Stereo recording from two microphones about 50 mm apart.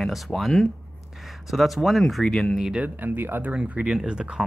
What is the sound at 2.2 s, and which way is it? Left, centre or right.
Speech, centre.